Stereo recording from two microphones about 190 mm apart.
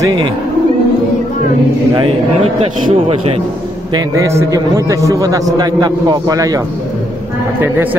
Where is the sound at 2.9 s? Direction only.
30° right (ahead or behind).